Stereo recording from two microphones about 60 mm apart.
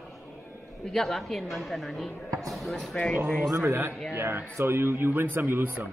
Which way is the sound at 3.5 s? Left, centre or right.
Right.